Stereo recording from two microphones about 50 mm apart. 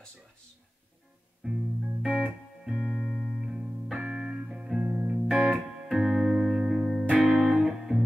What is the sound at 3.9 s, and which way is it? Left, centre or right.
Music, right.